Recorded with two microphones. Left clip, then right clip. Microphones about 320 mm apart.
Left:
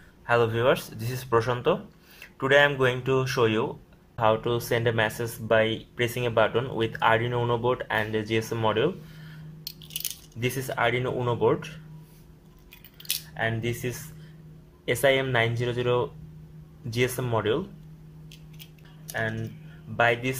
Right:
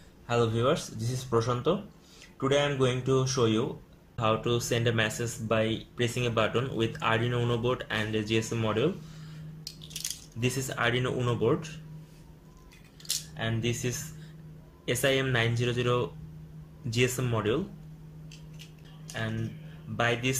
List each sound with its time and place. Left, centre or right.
0.3 s speech: left
10.4 s speech: centre
13.4 s speech: left
19.0 s speech: left